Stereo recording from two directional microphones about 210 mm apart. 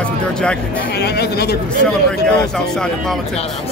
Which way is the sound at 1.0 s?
50° left (ahead or behind).